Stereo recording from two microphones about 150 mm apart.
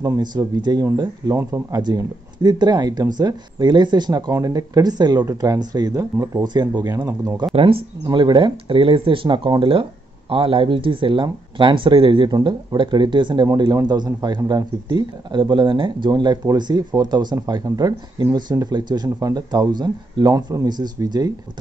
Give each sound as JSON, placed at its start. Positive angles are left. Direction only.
{"t": 0.0, "sound": "speech", "side_deg": -25}
{"t": 1.8, "sound": "speech", "side_deg": -30}
{"t": 7.0, "sound": "speech", "side_deg": -15}
{"t": 7.5, "sound": "speech", "side_deg": -35}